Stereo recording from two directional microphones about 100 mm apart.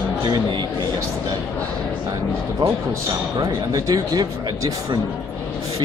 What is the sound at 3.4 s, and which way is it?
Speech, 40° right (ahead or behind).